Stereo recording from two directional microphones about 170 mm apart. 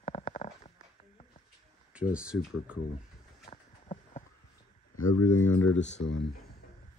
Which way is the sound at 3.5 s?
40° left (ahead or behind).